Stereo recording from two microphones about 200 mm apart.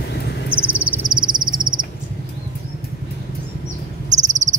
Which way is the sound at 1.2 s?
20° right (ahead or behind).